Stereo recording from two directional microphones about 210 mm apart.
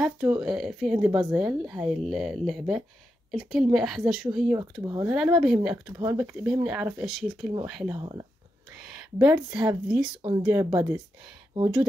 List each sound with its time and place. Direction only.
0.0 s speech: 5° right (ahead or behind)
4.8 s speech: 15° right (ahead or behind)
5.1 s speech: 5° right (ahead or behind)
8.0 s speech: 20° right (ahead or behind)
9.2 s speech: 5° right (ahead or behind)